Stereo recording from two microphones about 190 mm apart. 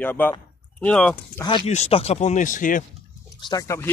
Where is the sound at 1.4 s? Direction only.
25° left (ahead or behind); by 2.8 s 45° left (ahead or behind).